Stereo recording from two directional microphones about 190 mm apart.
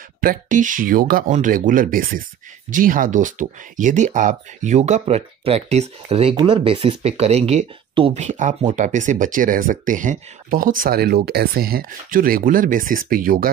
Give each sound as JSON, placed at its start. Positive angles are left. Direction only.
{"t": 0.2, "sound": "speech", "side_deg": -45}